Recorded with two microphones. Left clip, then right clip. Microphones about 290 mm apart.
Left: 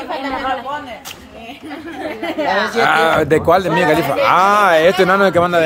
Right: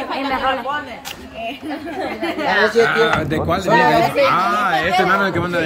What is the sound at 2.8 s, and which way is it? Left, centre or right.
A man's voice, centre.